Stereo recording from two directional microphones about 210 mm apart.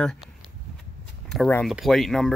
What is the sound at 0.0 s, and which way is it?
Speech, 5° left (ahead or behind).